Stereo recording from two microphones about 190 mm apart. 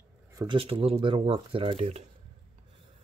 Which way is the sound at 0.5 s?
30° right (ahead or behind).